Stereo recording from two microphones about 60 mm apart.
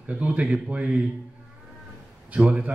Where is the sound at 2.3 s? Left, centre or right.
Right.